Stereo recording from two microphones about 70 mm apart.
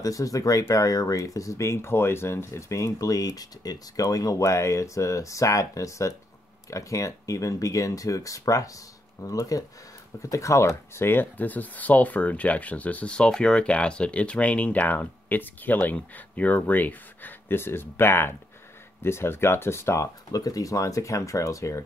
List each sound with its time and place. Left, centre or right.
0.0 s speech: left
20.2 s speech: left